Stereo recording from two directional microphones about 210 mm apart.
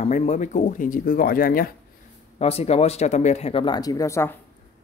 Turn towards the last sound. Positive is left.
turn(degrees=15)  # may be behind; listen again after turning